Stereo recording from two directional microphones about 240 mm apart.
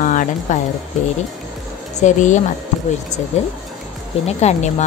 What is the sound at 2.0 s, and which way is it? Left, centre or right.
Speech, left.